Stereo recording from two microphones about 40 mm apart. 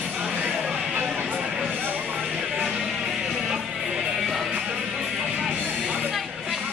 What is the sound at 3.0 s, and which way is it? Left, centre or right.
Music, centre.